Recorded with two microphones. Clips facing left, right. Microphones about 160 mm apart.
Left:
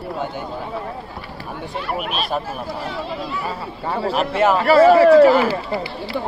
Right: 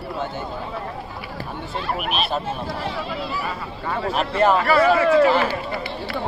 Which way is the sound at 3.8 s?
30° left (ahead or behind).